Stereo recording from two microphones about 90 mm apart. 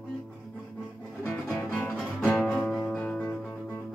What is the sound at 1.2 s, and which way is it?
Music, 25° left (ahead or behind).